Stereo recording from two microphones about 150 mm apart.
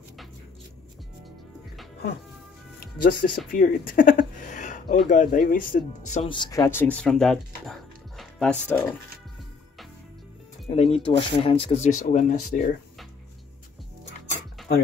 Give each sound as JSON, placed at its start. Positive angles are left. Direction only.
{"t": 3.0, "sound": "speech", "side_deg": 75}
{"t": 3.5, "sound": "a sound", "side_deg": 70}
{"t": 5.1, "sound": "speech", "side_deg": 60}
{"t": 6.2, "sound": "speech", "side_deg": 30}
{"t": 10.7, "sound": "speech", "side_deg": 40}
{"t": 11.9, "sound": "speech", "side_deg": 60}